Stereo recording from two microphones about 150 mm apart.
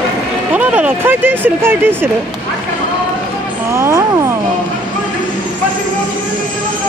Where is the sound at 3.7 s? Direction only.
20° right (ahead or behind).